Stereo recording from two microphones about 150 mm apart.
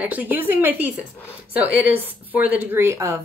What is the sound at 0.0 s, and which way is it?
Speech, 10° right (ahead or behind).